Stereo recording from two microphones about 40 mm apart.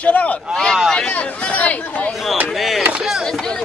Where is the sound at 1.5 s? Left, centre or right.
Left.